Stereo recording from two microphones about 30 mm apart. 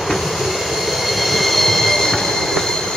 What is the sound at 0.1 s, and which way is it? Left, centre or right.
Train, centre.